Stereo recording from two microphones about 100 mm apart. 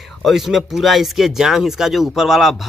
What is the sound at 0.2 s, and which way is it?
Speech, centre (ahead or behind).